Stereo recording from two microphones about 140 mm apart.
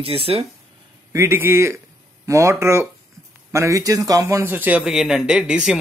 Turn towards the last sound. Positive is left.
turn(degrees=-5)  # may be behind; listen again after turning